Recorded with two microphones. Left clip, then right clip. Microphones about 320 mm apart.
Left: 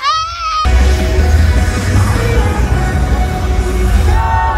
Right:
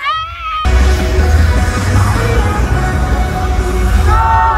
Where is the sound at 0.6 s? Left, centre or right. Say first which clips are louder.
Left 1 dB; centre.